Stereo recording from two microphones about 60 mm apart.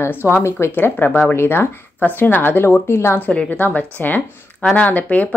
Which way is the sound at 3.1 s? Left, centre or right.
Left.